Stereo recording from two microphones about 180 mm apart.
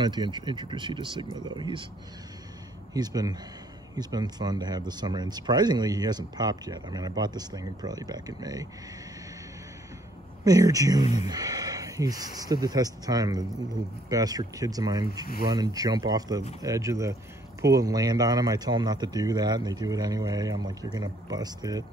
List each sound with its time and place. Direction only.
0.0 s speech: 25° right (ahead or behind)
2.9 s speech: 20° right (ahead or behind)
10.4 s speech: 20° right (ahead or behind)